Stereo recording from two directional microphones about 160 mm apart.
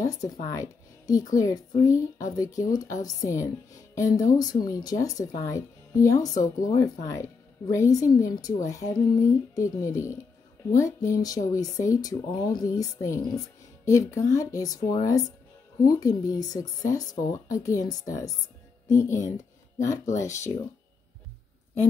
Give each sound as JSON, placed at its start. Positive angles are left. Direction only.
{"t": 0.0, "sound": "speech", "side_deg": 20}
{"t": 20.1, "sound": "speech", "side_deg": 50}